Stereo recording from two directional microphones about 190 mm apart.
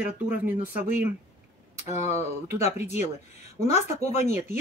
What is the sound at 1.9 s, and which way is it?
Speech, 35° left (ahead or behind).